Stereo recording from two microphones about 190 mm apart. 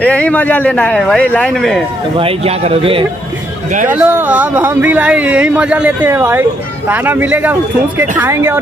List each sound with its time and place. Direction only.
0.0 s speech: 5° left (ahead or behind)
2.1 s a man's voice: 30° right (ahead or behind)
3.9 s speech: 10° right (ahead or behind)